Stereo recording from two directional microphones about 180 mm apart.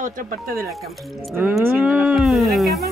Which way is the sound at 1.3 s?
10° right (ahead or behind).